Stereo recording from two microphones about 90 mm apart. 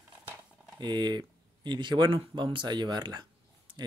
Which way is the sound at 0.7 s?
55° right (ahead or behind).